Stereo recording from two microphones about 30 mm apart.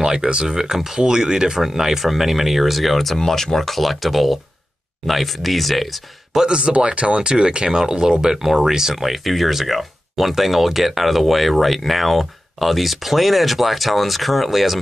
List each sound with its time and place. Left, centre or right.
0.0 s speech: right
1.8 s speech: centre
6.3 s speech: right
6.7 s speech: right
8.4 s speech: centre
8.9 s speech: centre